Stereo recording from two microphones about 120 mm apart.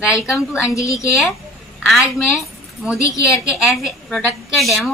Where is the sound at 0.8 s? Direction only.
25° left (ahead or behind).